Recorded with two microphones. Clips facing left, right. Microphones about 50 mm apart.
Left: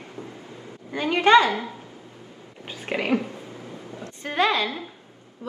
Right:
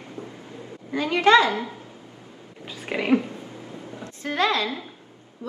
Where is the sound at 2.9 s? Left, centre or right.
Left.